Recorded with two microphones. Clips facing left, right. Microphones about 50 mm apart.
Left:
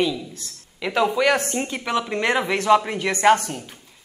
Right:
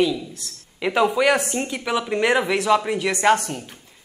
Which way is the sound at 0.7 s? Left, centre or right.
Centre.